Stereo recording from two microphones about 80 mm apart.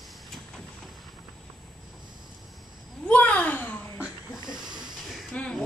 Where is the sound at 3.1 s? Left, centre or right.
Centre.